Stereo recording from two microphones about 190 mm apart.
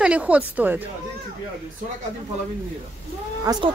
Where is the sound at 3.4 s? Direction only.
20° right (ahead or behind).